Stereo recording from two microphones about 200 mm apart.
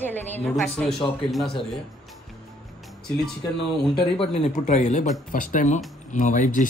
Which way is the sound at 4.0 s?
30° left (ahead or behind).